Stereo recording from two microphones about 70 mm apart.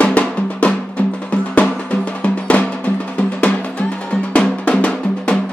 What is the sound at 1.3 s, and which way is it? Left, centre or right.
Music, centre.